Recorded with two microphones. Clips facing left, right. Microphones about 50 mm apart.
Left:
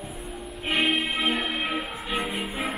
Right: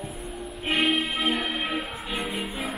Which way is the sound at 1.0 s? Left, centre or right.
Centre.